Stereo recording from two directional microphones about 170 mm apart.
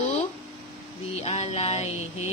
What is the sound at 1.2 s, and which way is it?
Speech, 40° left (ahead or behind).